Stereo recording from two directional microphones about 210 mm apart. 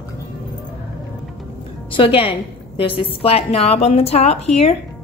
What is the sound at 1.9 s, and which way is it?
A woman's voice, 25° left (ahead or behind).